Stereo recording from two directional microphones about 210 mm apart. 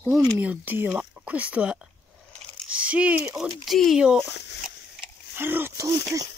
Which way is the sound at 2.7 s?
5° right (ahead or behind).